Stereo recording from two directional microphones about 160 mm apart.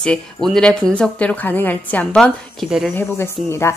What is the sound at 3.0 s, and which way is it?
Speech, 15° left (ahead or behind).